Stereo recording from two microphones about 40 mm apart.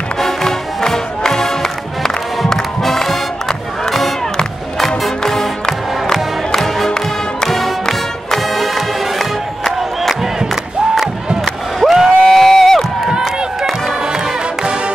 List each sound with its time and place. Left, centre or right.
0.2 s music: centre
11.8 s a sound: centre
12.3 s crowd: centre
14.1 s music: centre